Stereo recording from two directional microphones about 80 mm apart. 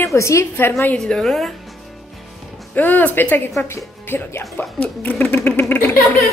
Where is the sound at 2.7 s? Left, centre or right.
Left.